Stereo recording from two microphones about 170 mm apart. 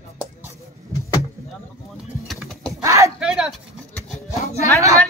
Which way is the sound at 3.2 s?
5° right (ahead or behind).